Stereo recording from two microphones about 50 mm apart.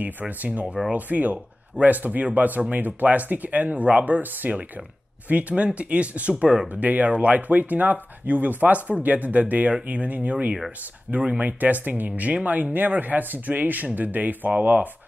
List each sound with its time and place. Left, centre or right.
0.0 s speech: right